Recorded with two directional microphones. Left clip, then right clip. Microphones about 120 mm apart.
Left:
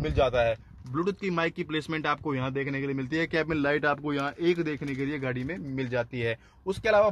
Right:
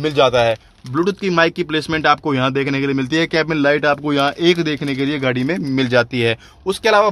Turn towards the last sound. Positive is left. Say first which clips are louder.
# right 9 dB
turn(degrees=5)  # may be behind; listen again after turning